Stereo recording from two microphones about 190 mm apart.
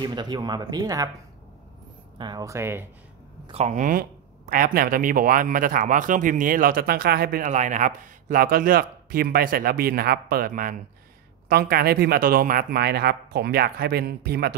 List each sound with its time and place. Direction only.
0.0 s speech: 25° right (ahead or behind)
2.1 s speech: 20° right (ahead or behind)
3.4 s speech: 35° right (ahead or behind); by 14.5 s 55° right (ahead or behind)